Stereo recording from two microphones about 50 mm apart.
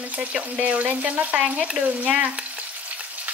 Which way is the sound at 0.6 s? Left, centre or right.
Right.